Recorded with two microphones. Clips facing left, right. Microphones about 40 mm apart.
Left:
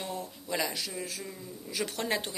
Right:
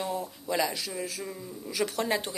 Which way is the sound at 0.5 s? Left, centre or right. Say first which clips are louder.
Right 4 dB; centre.